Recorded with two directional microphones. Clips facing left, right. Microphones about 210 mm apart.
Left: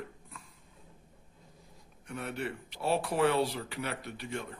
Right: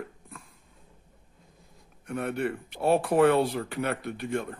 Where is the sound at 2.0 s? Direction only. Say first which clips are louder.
Right 7 dB; 50° right (ahead or behind).